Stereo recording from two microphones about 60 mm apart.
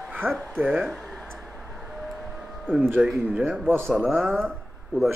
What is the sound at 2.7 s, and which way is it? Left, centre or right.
Speech, right.